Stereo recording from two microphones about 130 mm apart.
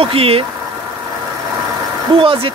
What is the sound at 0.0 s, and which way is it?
Speech, 45° right (ahead or behind).